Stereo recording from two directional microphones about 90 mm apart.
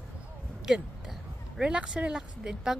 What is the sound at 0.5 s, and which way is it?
Speech, 5° right (ahead or behind).